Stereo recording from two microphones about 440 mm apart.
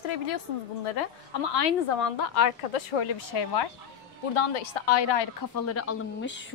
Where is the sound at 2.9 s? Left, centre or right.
Left.